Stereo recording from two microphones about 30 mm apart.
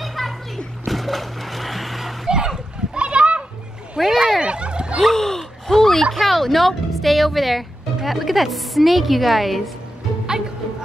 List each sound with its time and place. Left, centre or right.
0.0 s music: centre
0.8 s a sound: centre
2.2 s splash: right
3.0 s children playing: right
4.0 s a sound: centre
4.4 s turkey: right
5.1 s gasp: centre
5.7 s a sound: centre
6.1 s speech: centre